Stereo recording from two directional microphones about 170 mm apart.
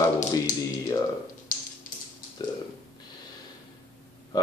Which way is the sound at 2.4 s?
25° left (ahead or behind).